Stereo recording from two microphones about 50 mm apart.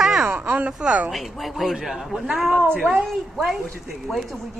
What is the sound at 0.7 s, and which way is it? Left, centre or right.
Speech, centre.